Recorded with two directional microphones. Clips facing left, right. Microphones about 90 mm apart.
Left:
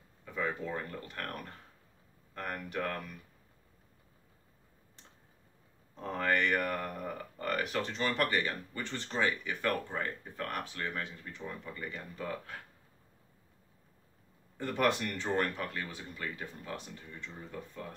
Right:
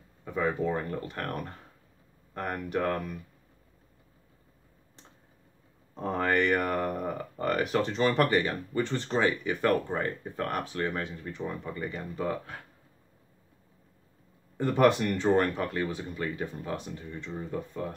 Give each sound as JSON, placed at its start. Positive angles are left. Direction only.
{"t": 0.2, "sound": "speech", "side_deg": -30}
{"t": 5.9, "sound": "speech", "side_deg": -30}
{"t": 14.6, "sound": "speech", "side_deg": -25}